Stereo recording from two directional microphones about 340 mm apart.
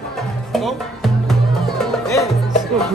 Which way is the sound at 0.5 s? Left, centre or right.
Centre.